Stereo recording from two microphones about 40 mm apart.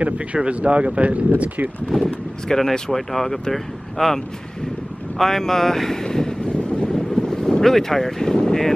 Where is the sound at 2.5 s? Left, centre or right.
Centre.